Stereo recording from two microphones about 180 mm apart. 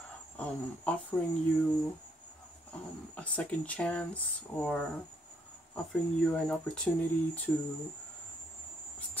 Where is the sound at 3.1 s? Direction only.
5° left (ahead or behind).